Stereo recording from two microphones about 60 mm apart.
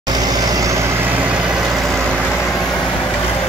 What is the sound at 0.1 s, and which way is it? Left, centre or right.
Vehicle, right.